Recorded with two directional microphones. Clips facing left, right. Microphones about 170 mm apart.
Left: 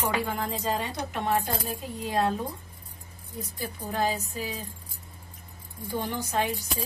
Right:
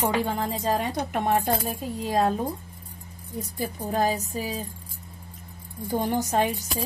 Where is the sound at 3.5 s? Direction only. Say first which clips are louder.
Right 4 dB; 45° right (ahead or behind).